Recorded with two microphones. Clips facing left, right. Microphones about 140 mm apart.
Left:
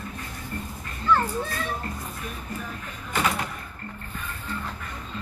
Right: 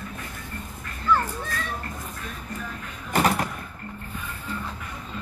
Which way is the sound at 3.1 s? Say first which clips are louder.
Right 4 dB; 40° right (ahead or behind).